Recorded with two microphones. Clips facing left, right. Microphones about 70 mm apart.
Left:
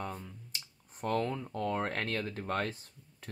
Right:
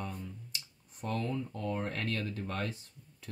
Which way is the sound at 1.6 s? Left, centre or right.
Left.